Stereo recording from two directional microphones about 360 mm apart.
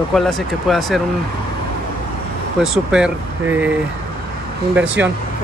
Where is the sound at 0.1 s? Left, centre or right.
Centre.